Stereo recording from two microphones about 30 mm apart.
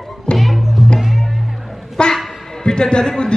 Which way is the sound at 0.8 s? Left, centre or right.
Centre.